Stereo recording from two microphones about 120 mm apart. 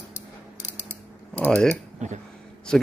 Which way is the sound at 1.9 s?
80° right.